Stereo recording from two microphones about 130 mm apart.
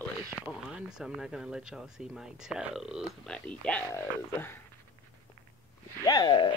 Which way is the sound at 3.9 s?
15° left (ahead or behind).